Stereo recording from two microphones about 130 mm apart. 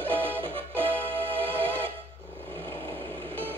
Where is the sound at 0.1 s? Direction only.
10° left (ahead or behind).